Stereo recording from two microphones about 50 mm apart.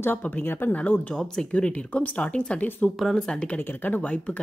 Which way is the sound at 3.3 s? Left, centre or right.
Left.